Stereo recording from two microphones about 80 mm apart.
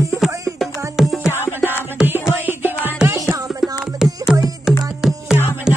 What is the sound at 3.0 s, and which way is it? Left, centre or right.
Music, right.